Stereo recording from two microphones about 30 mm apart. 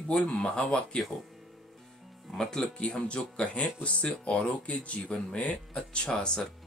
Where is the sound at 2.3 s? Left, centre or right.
Left.